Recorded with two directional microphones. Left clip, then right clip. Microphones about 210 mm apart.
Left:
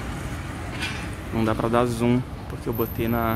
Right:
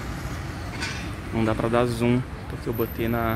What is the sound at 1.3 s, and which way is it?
Speech, centre (ahead or behind).